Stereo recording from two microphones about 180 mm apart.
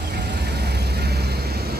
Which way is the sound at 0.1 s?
65° right (ahead or behind).